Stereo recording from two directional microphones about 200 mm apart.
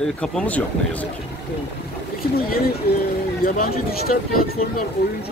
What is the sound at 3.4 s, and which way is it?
Speech, 45° left (ahead or behind).